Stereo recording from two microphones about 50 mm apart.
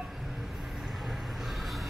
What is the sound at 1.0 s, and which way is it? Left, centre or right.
Vehicle, centre.